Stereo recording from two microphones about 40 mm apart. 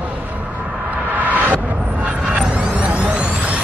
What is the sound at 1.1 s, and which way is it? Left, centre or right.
Music, right.